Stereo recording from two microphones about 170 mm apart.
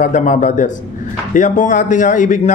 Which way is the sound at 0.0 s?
45° left (ahead or behind).